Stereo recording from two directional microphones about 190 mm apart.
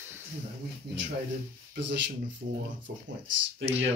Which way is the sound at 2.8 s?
75° right (ahead or behind).